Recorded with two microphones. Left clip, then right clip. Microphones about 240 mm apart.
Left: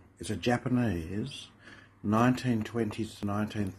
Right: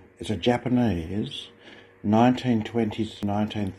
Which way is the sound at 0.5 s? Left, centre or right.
Centre.